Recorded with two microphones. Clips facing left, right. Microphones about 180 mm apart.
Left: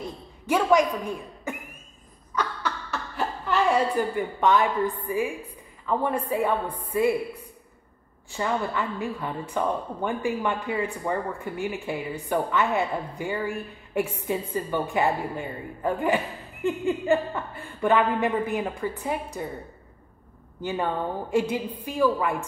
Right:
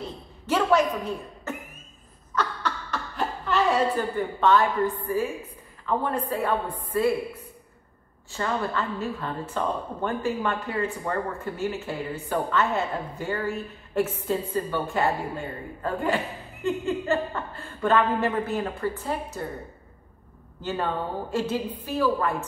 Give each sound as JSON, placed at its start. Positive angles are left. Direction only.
{"t": 0.5, "sound": "a woman's voice", "side_deg": 10}
{"t": 2.3, "sound": "a sound", "side_deg": 10}
{"t": 3.4, "sound": "a woman's voice", "side_deg": 10}
{"t": 8.3, "sound": "a woman's voice", "side_deg": 15}
{"t": 20.6, "sound": "a woman's voice", "side_deg": 15}